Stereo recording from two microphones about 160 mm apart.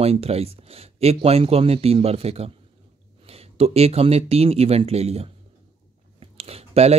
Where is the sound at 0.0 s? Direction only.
40° right (ahead or behind).